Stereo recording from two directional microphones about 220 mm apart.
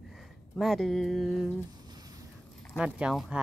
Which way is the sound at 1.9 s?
15° right (ahead or behind).